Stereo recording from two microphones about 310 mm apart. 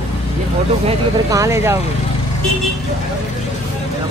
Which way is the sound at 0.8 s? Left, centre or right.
Centre.